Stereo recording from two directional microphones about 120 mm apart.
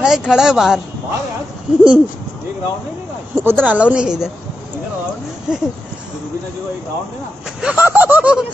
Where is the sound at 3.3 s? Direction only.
15° right (ahead or behind).